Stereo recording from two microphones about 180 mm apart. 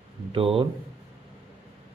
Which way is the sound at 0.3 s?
30° right (ahead or behind).